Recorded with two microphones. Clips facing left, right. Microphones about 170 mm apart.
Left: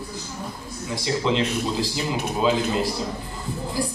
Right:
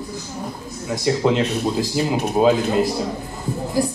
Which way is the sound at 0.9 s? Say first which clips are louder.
Right 5 dB; 50° right (ahead or behind).